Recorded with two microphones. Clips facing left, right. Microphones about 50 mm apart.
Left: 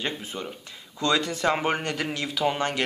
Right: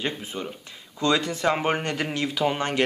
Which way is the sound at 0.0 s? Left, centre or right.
Centre.